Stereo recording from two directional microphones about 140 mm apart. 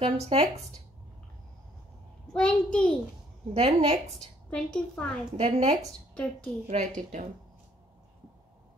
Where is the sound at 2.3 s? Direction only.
5° left (ahead or behind).